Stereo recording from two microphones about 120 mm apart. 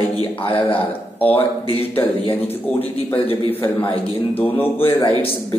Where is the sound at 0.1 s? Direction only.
50° left (ahead or behind).